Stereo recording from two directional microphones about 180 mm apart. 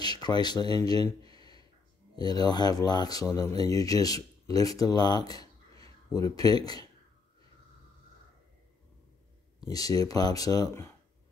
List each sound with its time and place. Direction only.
0.0 s a sound: 25° left (ahead or behind)
2.1 s speech: 20° left (ahead or behind)
9.7 s speech: 20° left (ahead or behind)